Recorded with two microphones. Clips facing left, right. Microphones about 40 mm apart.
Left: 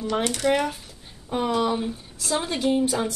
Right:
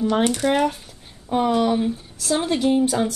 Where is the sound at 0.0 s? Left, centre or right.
Right.